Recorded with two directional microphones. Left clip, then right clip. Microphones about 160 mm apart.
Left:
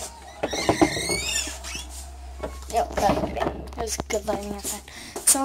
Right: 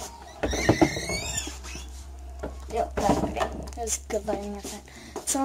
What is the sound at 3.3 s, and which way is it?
Speech, 10° right (ahead or behind).